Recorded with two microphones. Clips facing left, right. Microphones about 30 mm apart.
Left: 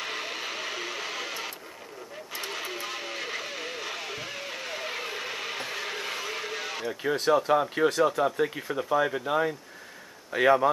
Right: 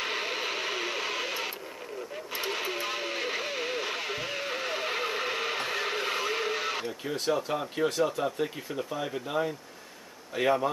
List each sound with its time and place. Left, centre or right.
0.0 s music: centre
2.3 s radio: centre
6.9 s speech: centre